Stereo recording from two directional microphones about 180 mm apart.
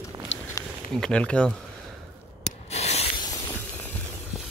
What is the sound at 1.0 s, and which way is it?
Speech, 5° left (ahead or behind).